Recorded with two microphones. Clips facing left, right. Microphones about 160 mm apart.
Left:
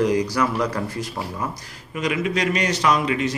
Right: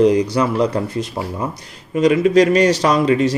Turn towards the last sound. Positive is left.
turn(degrees=-35)  # may be behind; listen again after turning